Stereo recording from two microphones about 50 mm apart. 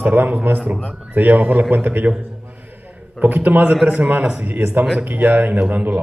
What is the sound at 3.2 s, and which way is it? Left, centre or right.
A man's voice, right.